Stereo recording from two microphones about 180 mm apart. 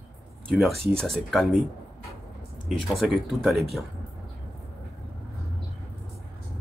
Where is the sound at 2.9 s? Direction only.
Centre (ahead or behind).